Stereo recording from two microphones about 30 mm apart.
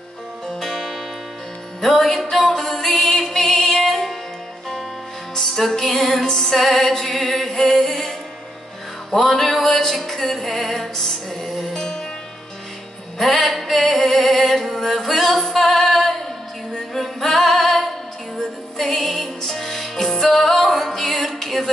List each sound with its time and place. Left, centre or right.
0.5 s music: centre
5.7 s music: centre
9.1 s music: centre
11.7 s music: left
13.2 s music: centre
13.7 s singing: centre
16.9 s music: centre